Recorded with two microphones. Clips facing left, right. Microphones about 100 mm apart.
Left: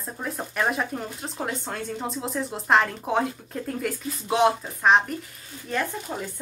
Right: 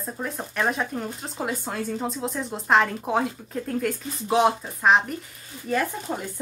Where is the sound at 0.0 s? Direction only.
Centre (ahead or behind).